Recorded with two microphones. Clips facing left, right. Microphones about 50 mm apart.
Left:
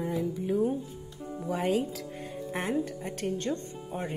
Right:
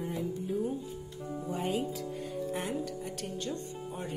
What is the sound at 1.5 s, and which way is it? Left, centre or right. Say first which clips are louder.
Speech: left 5 dB; left.